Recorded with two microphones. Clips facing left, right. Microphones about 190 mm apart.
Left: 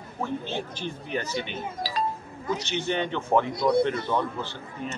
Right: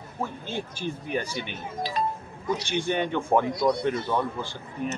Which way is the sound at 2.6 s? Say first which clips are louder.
Right 2 dB; 10° right (ahead or behind).